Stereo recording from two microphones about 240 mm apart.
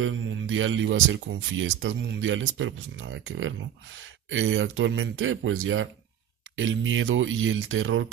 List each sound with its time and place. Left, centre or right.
0.0 s speech: right